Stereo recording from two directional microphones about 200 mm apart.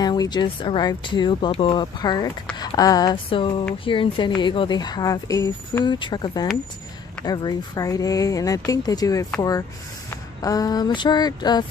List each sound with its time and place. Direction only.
0.0 s speech: 20° left (ahead or behind)